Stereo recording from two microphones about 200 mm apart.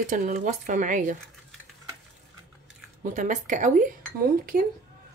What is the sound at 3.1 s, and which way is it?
A woman's voice, 40° right (ahead or behind).